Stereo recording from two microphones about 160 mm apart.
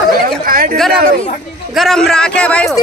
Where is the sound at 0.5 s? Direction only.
65° right (ahead or behind).